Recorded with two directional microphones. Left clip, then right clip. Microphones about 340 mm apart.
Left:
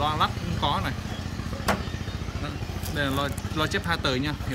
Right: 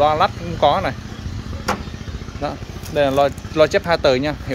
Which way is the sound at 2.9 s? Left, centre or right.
Centre.